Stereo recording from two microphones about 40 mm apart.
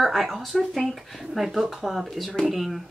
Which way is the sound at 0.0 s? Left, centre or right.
Centre.